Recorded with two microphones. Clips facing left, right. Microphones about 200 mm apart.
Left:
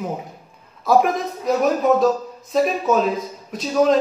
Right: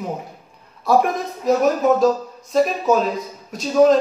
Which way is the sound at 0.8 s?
Centre (ahead or behind).